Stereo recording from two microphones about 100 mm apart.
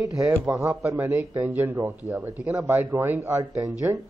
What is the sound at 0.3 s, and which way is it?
A man's voice, 30° right (ahead or behind).